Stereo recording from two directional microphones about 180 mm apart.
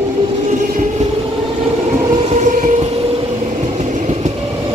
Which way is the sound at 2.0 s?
25° right (ahead or behind).